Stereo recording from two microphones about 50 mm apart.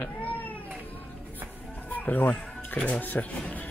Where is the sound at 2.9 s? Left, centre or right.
Left.